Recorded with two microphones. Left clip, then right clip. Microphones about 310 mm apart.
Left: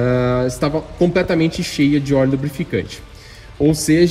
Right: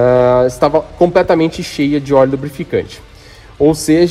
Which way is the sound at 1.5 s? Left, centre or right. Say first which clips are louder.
Right 1 dB; left.